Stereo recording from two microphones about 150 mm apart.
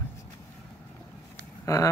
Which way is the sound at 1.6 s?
20° left (ahead or behind).